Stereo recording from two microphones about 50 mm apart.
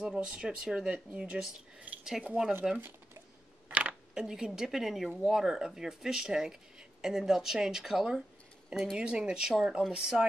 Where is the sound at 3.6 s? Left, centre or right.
Right.